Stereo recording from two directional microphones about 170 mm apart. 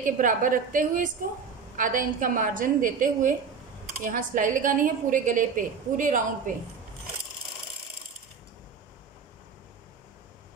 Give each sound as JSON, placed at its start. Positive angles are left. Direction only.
{"t": 0.0, "sound": "a woman's voice", "side_deg": -50}